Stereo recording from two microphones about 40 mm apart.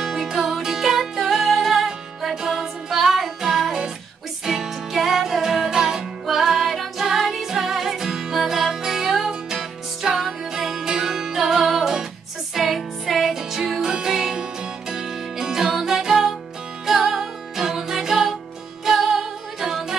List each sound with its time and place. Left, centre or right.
0.0 s music: centre